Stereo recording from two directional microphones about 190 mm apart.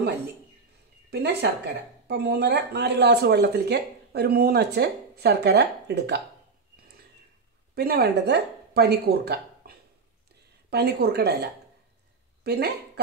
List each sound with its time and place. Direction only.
1.1 s speech: 60° right (ahead or behind)
7.7 s speech: 55° right (ahead or behind)
12.4 s speech: 60° right (ahead or behind)